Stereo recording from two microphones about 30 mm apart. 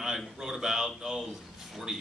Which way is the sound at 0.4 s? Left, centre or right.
Centre.